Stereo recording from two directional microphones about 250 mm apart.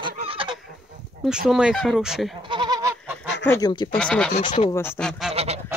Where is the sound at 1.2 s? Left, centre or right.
Centre.